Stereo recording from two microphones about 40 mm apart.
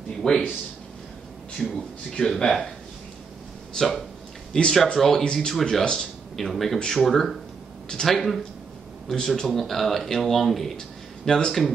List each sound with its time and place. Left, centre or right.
0.2 s speech: centre
1.6 s speech: centre
2.1 s speech: centre
3.7 s speech: centre
4.5 s speech: centre
4.9 s speech: centre
5.2 s speech: centre
5.5 s speech: centre
11.2 s speech: centre